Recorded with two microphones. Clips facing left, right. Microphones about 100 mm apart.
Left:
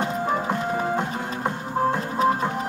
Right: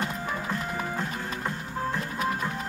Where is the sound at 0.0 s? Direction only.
30° left (ahead or behind).